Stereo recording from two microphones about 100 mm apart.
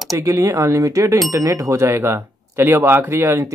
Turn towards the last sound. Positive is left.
turn(degrees=-25)  # may be behind; listen again after turning